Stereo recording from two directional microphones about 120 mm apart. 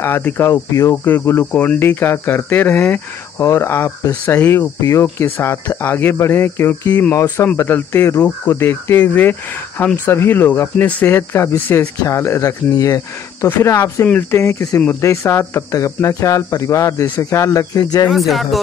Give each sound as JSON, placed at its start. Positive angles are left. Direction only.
{"t": 0.0, "sound": "speech", "side_deg": 20}
{"t": 18.1, "sound": "speech", "side_deg": 0}